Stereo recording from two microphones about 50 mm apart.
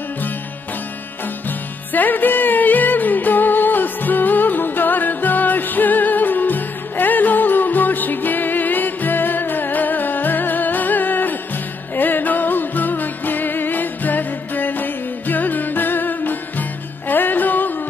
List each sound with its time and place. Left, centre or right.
1.9 s music: left